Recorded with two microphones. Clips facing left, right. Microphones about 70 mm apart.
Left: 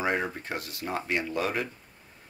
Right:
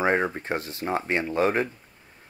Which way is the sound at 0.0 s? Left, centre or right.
Right.